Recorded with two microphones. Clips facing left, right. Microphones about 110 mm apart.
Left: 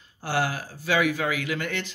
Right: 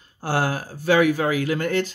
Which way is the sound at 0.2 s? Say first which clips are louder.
Right 3 dB; 45° right (ahead or behind).